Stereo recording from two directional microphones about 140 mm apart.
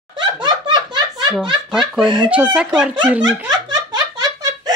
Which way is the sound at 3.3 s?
30° right (ahead or behind).